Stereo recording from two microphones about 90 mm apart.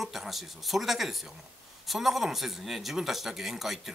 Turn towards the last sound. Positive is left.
turn(degrees=0)  # may be behind; listen again after turning